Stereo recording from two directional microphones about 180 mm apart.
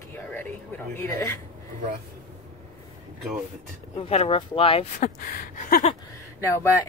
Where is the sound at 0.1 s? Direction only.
10° left (ahead or behind).